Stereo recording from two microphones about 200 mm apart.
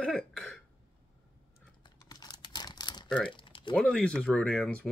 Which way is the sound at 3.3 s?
25° left (ahead or behind).